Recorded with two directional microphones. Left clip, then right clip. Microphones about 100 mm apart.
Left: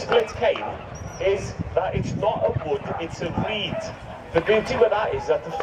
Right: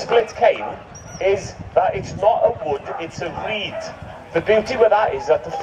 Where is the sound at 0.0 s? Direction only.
35° right (ahead or behind).